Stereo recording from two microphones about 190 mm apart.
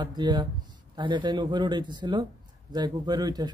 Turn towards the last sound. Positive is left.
turn(degrees=-20)  # may be behind; listen again after turning